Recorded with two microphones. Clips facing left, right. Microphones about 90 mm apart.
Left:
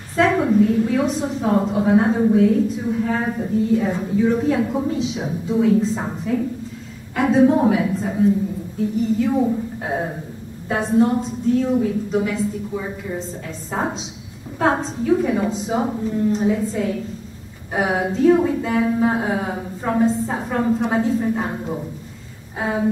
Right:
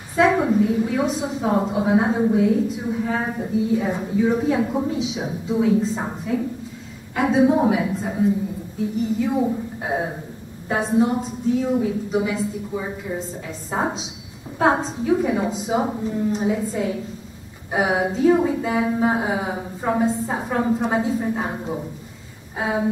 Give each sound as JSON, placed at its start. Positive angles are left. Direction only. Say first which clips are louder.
{"t": 0.1, "sound": "a woman's voice", "louder": "left 1 dB", "side_deg": -5}